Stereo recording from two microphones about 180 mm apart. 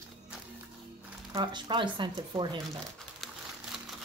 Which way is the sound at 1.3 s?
25° right (ahead or behind).